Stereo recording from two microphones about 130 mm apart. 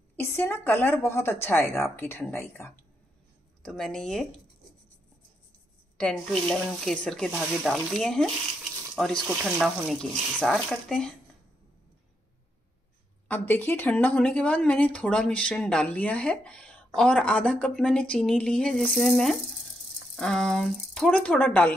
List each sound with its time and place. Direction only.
0.1 s speech: 15° left (ahead or behind)
3.6 s speech: 5° left (ahead or behind)
5.9 s speech: 5° left (ahead or behind)
13.3 s speech: 15° left (ahead or behind)